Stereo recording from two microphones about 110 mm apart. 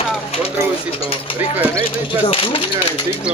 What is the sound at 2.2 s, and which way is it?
Speech, 55° left (ahead or behind).